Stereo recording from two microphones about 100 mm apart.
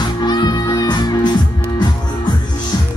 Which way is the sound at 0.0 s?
45° left (ahead or behind).